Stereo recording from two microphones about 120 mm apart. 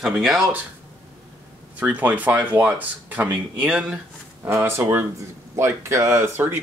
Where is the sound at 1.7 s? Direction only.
15° right (ahead or behind).